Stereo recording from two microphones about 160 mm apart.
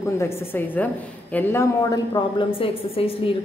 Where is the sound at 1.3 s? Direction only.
15° left (ahead or behind).